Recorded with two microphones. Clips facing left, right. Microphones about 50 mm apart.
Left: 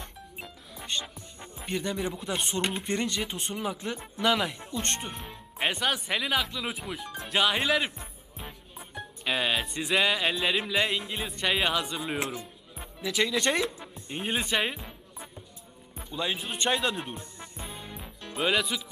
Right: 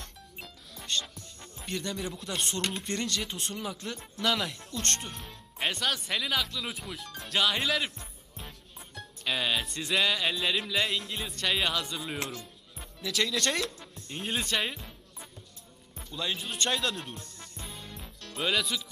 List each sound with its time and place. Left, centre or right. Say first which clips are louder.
0.0 s speech: left 3 dB; centre
7.8 s music: left 2 dB; centre
8.7 s speech: left 6 dB; centre
16.0 s music: left 3 dB; centre